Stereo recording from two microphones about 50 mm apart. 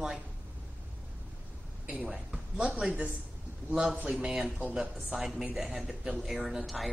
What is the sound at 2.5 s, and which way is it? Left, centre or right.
A man's voice, right.